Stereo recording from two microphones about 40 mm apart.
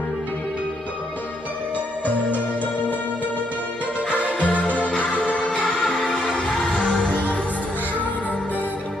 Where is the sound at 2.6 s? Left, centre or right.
Left.